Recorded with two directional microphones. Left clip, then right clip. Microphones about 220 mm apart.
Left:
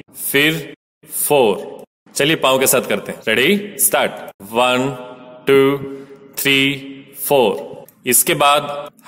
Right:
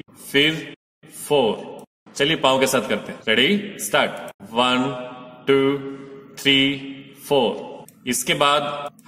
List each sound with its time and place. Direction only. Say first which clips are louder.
0.3 s a man's voice: left 3 dB; 45° left (ahead or behind)
5.4 s music: left 5 dB; 45° left (ahead or behind)
6.3 s a man's voice: left 3 dB; 45° left (ahead or behind)